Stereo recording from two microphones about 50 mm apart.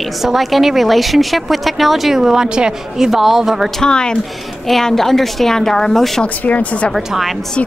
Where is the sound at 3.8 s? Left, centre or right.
Centre.